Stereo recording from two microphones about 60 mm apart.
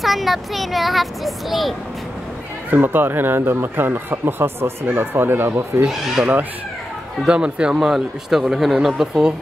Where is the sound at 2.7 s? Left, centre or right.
Right.